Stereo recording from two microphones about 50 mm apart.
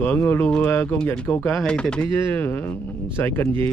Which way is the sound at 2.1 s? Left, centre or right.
Left.